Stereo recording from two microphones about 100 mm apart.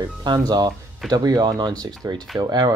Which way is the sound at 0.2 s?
45° right (ahead or behind).